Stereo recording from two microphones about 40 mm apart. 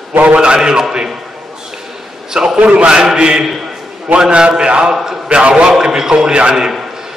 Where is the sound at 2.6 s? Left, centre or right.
Right.